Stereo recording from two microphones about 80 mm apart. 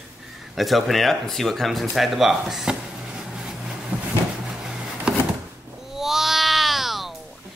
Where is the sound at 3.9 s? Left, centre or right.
Centre.